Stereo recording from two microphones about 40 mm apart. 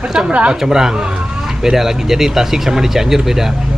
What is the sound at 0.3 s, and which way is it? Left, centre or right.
Speech, right.